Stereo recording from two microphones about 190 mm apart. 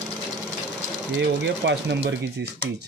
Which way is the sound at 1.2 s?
65° right (ahead or behind).